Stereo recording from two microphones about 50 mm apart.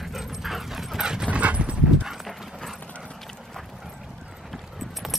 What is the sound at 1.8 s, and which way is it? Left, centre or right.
Clip-clop, centre.